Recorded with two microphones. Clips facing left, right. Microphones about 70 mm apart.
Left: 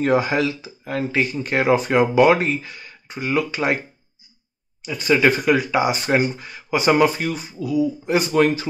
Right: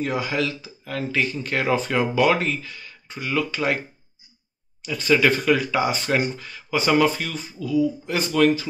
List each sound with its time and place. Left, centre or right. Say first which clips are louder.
0.0 s speech: left 7 dB; left
0.4 s speech: left 3 dB; left
4.8 s speech: left 2 dB; centre